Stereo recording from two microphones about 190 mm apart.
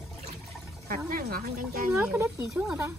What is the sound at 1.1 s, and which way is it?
Speech, 50° right (ahead or behind).